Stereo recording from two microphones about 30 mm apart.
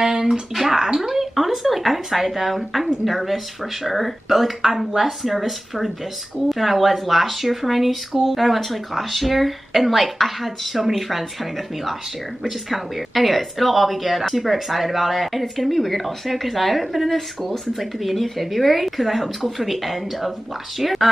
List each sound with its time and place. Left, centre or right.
0.0 s a sound: centre
0.6 s speech: centre
12.4 s speech: centre